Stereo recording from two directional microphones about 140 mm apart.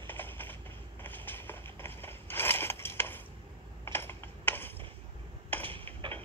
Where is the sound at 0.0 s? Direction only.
15° left (ahead or behind).